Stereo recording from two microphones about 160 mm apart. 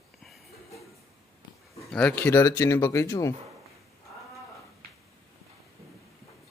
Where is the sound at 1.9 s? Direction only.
5° left (ahead or behind).